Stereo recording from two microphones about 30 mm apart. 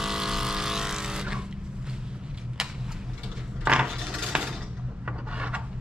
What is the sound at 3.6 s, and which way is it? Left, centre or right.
Mechanisms, right.